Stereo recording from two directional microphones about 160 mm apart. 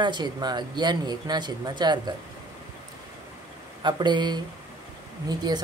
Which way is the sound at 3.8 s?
30° right (ahead or behind).